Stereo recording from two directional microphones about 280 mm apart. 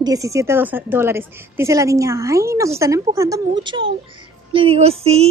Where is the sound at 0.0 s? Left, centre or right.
Centre.